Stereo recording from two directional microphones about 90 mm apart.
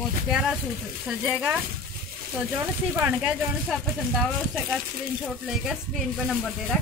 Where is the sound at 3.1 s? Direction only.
5° right (ahead or behind).